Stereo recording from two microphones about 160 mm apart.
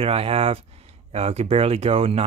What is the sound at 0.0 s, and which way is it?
Speech, 35° right (ahead or behind).